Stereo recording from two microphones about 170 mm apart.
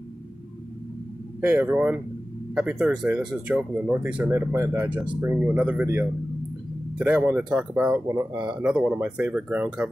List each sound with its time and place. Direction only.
1.4 s speech: 10° right (ahead or behind)
7.9 s speech: 15° right (ahead or behind)
8.5 s speech: 5° right (ahead or behind)